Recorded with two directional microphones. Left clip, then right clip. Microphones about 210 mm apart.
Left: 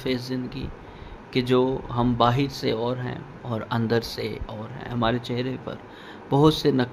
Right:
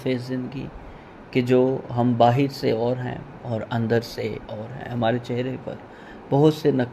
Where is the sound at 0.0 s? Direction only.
Centre (ahead or behind).